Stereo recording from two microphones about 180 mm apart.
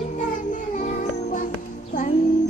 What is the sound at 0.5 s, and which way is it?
Music, 45° left (ahead or behind).